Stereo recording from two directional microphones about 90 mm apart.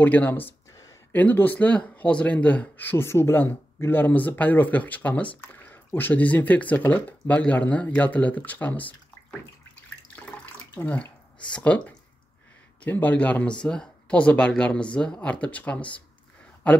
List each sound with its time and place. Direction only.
0.0 s speech: 20° left (ahead or behind)
10.1 s water: 20° left (ahead or behind)
11.5 s speech: 15° left (ahead or behind)